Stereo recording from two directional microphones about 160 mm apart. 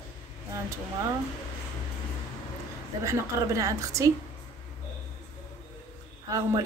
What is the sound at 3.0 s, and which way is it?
Speech, 20° right (ahead or behind).